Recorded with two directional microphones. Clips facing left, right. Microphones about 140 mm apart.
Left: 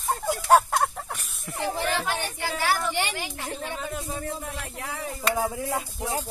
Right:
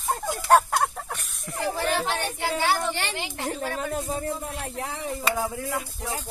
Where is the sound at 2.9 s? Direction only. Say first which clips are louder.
Left 1 dB; 15° left (ahead or behind).